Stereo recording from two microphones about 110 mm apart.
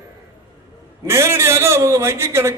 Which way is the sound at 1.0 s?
25° right (ahead or behind).